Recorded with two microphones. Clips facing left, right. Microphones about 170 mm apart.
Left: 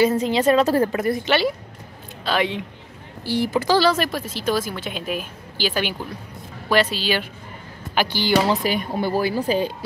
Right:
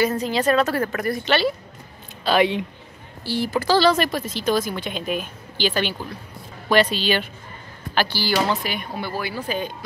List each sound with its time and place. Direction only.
0.2 s a woman's voice: 25° left (ahead or behind)
1.2 s speech: 15° left (ahead or behind)
2.2 s speech: 10° right (ahead or behind)
3.3 s a woman's voice: 20° left (ahead or behind)
7.9 s speech: 15° left (ahead or behind)
8.5 s speech: 40° left (ahead or behind)